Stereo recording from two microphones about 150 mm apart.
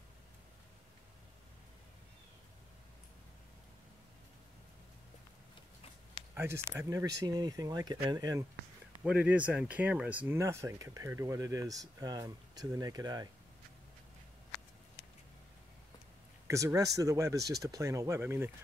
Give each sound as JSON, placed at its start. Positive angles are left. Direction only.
{"t": 6.3, "sound": "speech", "side_deg": -15}
{"t": 9.0, "sound": "speech", "side_deg": -10}
{"t": 16.4, "sound": "speech", "side_deg": -20}